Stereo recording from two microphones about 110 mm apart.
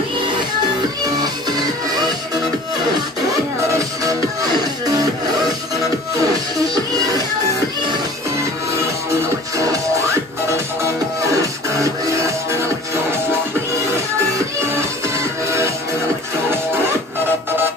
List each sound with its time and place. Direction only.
1.2 s music: 35° right (ahead or behind)
3.7 s music: 30° right (ahead or behind)
6.2 s music: 35° right (ahead or behind)
9.6 s music: 30° right (ahead or behind)
11.7 s music: 25° right (ahead or behind)
14.7 s music: 25° right (ahead or behind)